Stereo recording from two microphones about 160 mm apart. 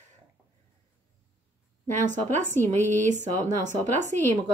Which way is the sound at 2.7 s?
50° right (ahead or behind).